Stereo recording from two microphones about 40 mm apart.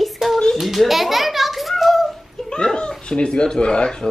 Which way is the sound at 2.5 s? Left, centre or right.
Left.